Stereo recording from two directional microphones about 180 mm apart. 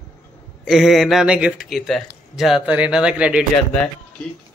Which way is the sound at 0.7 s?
Centre (ahead or behind).